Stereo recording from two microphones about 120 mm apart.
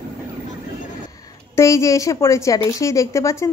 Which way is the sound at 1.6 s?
25° left (ahead or behind).